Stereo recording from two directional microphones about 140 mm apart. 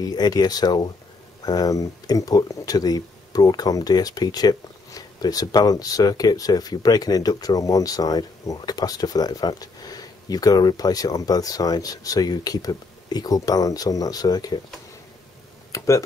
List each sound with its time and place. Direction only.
0.0 s speech: 30° left (ahead or behind)
15.7 s computer keyboard: 25° left (ahead or behind)